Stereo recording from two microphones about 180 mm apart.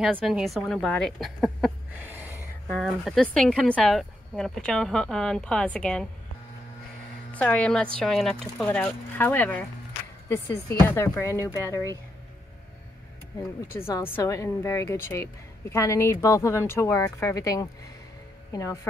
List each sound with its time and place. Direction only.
0.0 s speech: centre (ahead or behind)
2.0 s a sound: 10° right (ahead or behind)
2.7 s speech: centre (ahead or behind)
7.3 s speech: 5° left (ahead or behind)
13.7 s speech: 15° left (ahead or behind)